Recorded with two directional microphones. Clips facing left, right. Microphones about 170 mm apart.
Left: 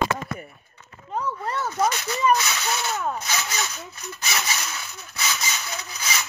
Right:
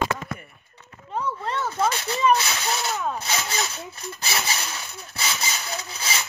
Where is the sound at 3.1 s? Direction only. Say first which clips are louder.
Right 1 dB; 30° right (ahead or behind).